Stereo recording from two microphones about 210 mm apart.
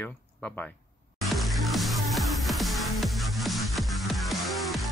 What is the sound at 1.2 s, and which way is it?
Music, centre (ahead or behind).